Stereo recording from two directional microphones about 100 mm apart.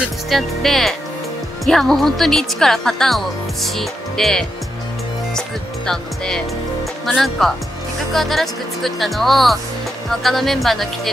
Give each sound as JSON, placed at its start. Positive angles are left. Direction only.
{"t": 0.3, "sound": "speech", "side_deg": 0}
{"t": 5.9, "sound": "speech", "side_deg": 5}